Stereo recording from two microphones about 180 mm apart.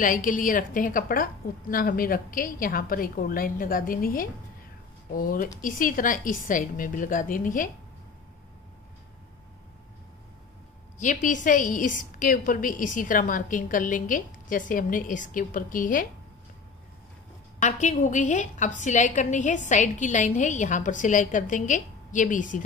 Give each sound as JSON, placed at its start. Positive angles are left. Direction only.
{"t": 0.0, "sound": "a woman's voice", "side_deg": 50}
{"t": 11.0, "sound": "a woman's voice", "side_deg": 45}
{"t": 17.6, "sound": "a woman's voice", "side_deg": 40}